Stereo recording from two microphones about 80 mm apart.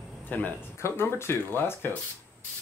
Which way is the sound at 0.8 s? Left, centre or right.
Left.